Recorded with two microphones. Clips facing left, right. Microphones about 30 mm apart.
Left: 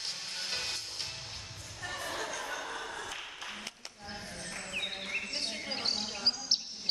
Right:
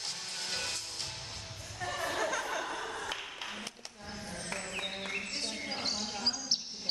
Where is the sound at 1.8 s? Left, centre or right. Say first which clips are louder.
Right 4 dB; centre.